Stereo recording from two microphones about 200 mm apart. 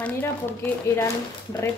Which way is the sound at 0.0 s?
10° left (ahead or behind).